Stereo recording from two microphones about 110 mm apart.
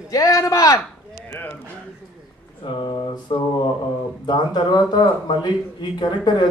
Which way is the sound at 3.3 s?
50° left (ahead or behind).